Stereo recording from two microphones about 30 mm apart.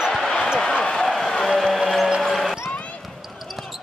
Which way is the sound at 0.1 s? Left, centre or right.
Centre.